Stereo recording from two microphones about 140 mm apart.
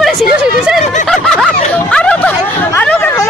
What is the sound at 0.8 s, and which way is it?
Snicker, 60° left (ahead or behind).